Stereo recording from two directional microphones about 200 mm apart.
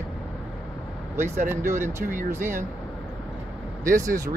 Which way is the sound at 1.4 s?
10° right (ahead or behind).